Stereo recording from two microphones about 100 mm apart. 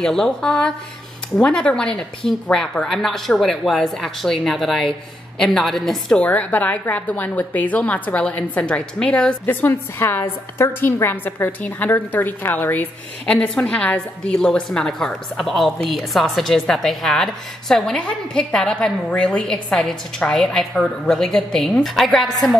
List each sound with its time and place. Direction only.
0.0 s a woman's voice: 5° left (ahead or behind)